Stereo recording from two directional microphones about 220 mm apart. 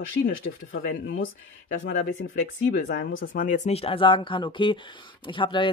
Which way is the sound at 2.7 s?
55° left (ahead or behind).